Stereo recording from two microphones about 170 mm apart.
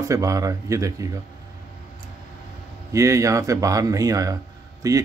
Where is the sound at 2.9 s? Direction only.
20° right (ahead or behind).